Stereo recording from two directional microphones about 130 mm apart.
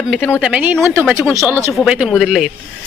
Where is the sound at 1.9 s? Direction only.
5° right (ahead or behind).